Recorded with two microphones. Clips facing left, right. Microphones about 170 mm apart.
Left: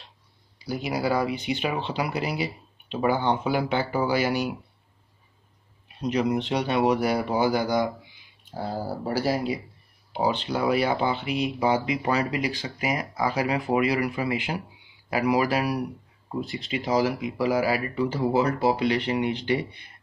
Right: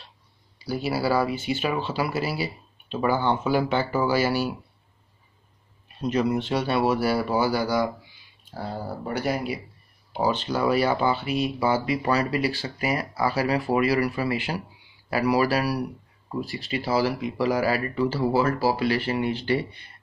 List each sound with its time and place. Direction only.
0.7 s speech: 15° left (ahead or behind)
5.9 s speech: 15° left (ahead or behind)
8.7 s speech: 30° left (ahead or behind)
10.1 s speech: 15° left (ahead or behind)